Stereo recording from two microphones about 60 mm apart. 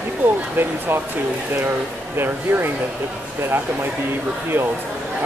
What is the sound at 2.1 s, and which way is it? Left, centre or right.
Speech, right.